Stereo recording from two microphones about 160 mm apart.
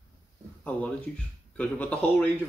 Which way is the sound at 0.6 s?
10° left (ahead or behind).